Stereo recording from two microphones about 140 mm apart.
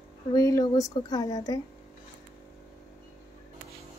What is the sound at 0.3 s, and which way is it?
A woman's voice, 25° left (ahead or behind).